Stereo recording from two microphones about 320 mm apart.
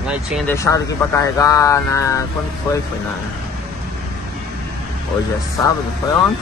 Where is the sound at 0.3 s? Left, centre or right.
Centre.